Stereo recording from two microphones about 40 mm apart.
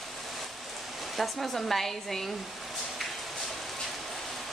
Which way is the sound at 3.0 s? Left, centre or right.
Centre.